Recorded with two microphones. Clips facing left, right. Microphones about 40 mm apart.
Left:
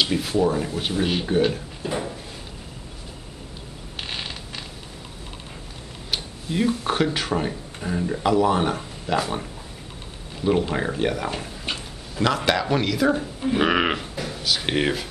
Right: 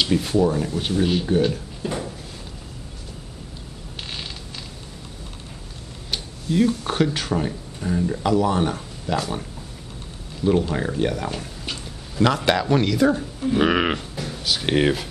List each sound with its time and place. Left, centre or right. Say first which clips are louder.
0.0 s speech: right 2 dB; centre
1.8 s a sound: left 1 dB; centre
6.1 s a sound: right 4 dB; centre
7.2 s speech: even; centre
12.2 s speech: right 2 dB; centre
13.1 s speech: right 1 dB; centre